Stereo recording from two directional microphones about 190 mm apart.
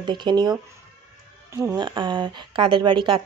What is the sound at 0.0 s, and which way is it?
Speech, 25° right (ahead or behind).